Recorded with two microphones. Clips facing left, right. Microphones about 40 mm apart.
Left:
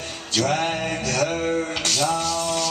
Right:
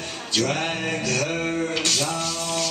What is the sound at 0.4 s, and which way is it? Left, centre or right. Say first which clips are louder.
Male singing: left 2 dB; centre.